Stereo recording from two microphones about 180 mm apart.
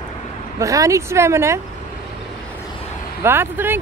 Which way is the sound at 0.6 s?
20° right (ahead or behind).